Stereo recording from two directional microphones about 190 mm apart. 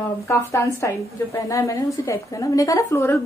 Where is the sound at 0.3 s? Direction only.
15° left (ahead or behind).